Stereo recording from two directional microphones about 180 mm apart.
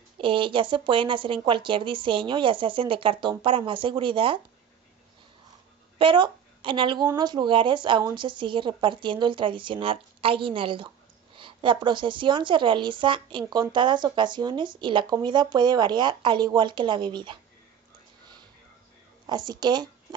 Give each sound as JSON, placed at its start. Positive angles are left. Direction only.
{"t": 0.2, "sound": "a woman's voice", "side_deg": -30}
{"t": 5.9, "sound": "a woman's voice", "side_deg": -25}
{"t": 19.2, "sound": "speech", "side_deg": -25}